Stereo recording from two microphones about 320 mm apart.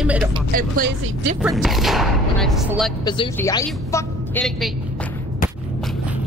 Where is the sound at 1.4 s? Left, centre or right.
Centre.